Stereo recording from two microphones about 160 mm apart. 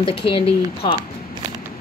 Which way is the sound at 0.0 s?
35° left (ahead or behind).